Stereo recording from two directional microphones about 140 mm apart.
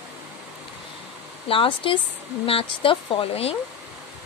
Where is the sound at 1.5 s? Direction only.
40° left (ahead or behind).